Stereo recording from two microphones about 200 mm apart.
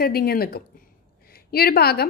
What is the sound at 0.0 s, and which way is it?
A woman's voice, 50° left (ahead or behind).